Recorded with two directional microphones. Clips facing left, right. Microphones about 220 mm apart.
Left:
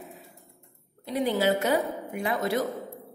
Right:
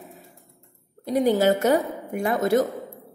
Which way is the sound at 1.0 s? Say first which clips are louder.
Right 6 dB; 45° right (ahead or behind).